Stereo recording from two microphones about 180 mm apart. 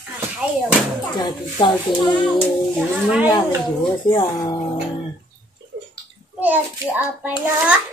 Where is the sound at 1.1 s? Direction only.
25° left (ahead or behind).